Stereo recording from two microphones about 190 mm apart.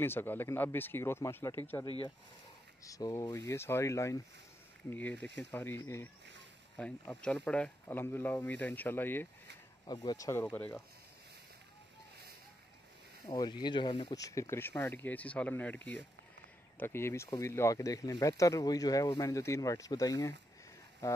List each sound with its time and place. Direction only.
0.0 s speech: 10° left (ahead or behind)
1.9 s speech: 30° left (ahead or behind)
2.8 s speech: 20° left (ahead or behind)
13.3 s speech: 20° left (ahead or behind)